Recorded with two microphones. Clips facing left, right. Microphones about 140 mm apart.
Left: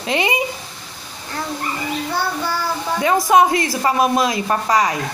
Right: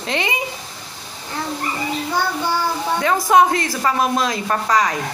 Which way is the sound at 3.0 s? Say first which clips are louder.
Left 1 dB; 10° left (ahead or behind).